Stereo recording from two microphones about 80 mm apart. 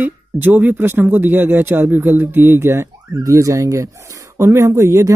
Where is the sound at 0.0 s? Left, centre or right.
Right.